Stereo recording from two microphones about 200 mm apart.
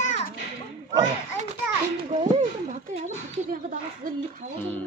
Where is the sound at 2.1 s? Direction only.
35° right (ahead or behind).